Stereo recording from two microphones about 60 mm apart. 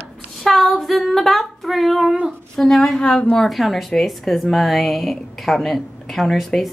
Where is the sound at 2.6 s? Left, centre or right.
Centre.